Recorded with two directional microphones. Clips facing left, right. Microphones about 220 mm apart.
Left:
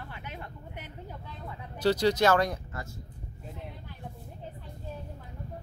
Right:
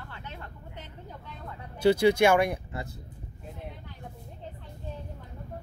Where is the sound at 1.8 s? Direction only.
10° right (ahead or behind).